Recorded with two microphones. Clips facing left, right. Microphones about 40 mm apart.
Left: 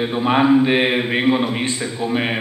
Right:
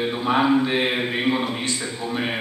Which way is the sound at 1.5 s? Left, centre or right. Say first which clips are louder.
Left 4 dB; left.